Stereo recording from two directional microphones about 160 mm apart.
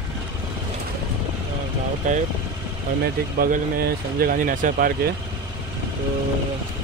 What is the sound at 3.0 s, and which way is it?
Speech, 70° right (ahead or behind).